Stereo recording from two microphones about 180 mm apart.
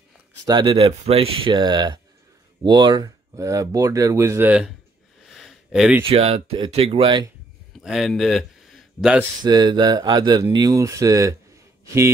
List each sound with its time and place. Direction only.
0.5 s speech: 25° right (ahead or behind); by 4.6 s 10° right (ahead or behind)
5.2 s a sound: centre (ahead or behind)
6.0 s speech: 35° right (ahead or behind)
7.8 s speech: centre (ahead or behind)
9.4 s speech: 25° right (ahead or behind)